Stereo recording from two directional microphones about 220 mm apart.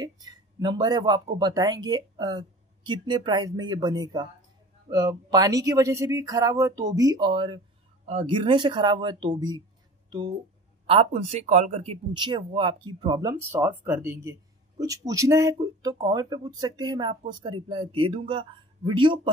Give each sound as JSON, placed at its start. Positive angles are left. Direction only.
{"t": 0.0, "sound": "speech", "side_deg": -20}